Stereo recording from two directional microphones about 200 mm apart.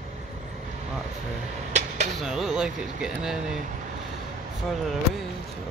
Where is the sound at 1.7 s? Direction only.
35° right (ahead or behind).